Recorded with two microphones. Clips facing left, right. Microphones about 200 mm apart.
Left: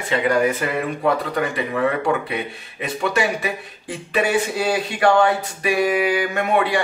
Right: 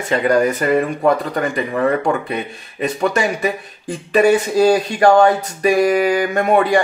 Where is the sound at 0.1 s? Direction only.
40° right (ahead or behind).